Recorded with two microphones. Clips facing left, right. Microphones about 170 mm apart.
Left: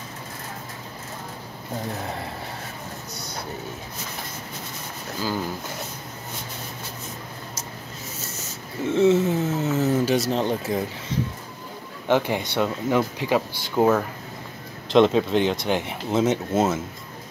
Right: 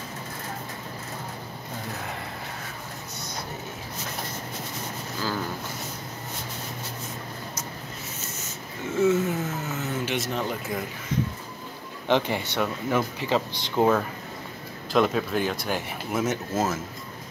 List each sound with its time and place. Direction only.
8.9 s a sound: 25° left (ahead or behind)
12.1 s speech: 15° left (ahead or behind)
14.9 s speech: 25° left (ahead or behind)